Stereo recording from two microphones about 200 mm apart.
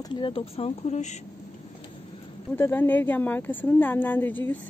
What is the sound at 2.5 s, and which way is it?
Speech, 10° left (ahead or behind).